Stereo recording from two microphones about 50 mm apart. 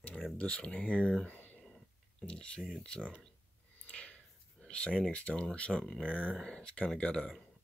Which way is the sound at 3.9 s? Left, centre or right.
Left.